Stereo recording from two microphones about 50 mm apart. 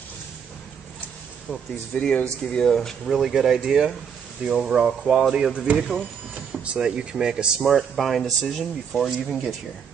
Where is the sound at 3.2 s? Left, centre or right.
Centre.